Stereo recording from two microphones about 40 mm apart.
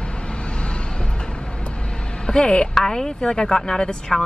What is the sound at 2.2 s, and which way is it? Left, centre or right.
A woman's voice, left.